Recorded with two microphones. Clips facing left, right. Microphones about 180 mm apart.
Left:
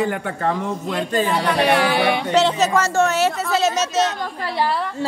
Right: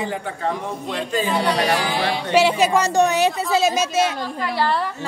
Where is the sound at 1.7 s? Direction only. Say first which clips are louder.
Left 4 dB; 65° left (ahead or behind).